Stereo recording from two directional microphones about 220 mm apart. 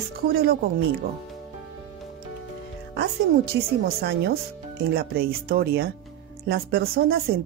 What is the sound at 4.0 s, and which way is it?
A woman's voice, 45° right (ahead or behind).